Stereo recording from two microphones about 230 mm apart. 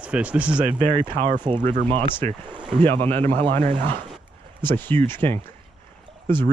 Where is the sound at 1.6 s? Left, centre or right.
Right.